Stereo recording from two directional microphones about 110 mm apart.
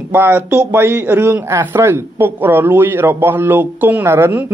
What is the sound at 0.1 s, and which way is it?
Speech, 20° right (ahead or behind).